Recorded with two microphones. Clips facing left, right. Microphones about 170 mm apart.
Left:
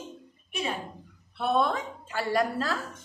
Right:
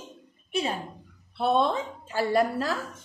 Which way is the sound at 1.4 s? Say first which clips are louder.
Right 2 dB; 25° right (ahead or behind).